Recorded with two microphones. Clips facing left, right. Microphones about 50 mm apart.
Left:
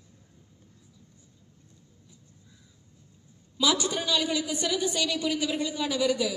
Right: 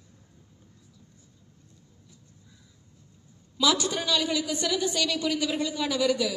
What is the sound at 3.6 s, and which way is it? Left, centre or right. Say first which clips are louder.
A woman's voice: right 1 dB; left.